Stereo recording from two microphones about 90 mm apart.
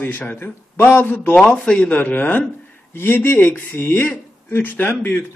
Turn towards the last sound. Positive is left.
turn(degrees=25)  # may be behind; listen again after turning